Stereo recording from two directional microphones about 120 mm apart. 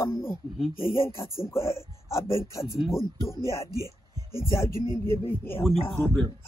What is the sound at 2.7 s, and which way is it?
Speech, centre (ahead or behind).